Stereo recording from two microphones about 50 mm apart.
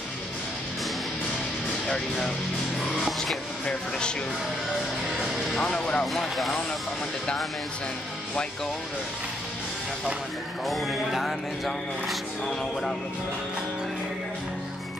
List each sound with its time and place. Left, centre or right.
5.9 s speech: centre
6.3 s music: centre
10.7 s music: centre